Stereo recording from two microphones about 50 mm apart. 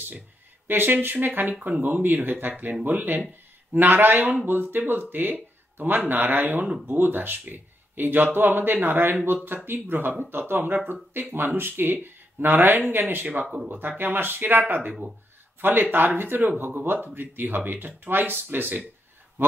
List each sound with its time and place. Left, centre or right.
0.7 s speech: right
15.6 s speech: right